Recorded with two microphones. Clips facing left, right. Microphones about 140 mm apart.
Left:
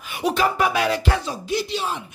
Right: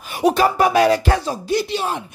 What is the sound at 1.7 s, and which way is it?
Speech, 55° right (ahead or behind).